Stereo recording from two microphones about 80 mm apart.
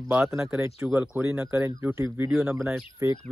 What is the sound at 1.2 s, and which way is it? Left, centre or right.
Speech, right.